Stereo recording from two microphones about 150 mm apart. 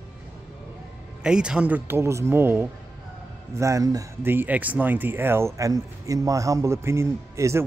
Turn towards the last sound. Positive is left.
turn(degrees=-20)  # may be behind; listen again after turning